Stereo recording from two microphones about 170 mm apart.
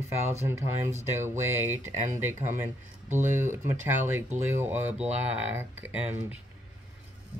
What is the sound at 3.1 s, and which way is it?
Speech, 45° right (ahead or behind).